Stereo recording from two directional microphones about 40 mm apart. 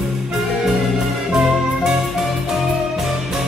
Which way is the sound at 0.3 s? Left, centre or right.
Centre.